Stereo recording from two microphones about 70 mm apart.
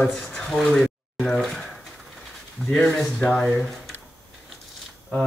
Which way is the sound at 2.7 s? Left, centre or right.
Centre.